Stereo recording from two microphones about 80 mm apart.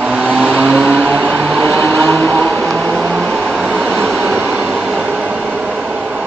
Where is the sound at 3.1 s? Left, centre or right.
Centre.